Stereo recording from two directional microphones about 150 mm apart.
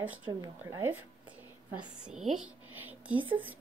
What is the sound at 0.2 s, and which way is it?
Speech, 25° right (ahead or behind).